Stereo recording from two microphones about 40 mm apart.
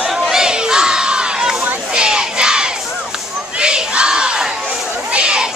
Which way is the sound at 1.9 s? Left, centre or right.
Centre.